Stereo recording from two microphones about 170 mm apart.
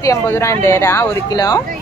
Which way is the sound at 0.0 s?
20° left (ahead or behind).